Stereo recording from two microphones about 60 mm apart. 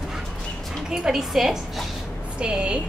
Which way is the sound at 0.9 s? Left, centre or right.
Centre.